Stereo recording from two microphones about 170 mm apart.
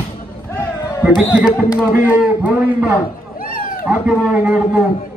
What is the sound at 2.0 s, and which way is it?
Speech, 10° right (ahead or behind).